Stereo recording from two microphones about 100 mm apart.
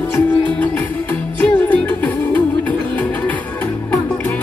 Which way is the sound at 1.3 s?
15° left (ahead or behind).